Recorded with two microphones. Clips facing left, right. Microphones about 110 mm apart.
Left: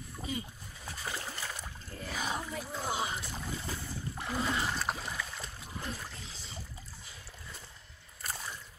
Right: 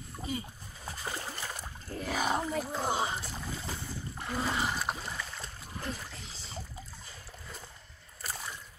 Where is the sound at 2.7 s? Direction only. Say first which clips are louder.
Right 3 dB; 35° right (ahead or behind).